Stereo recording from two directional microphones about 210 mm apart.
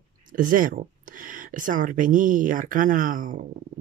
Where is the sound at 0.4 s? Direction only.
40° right (ahead or behind).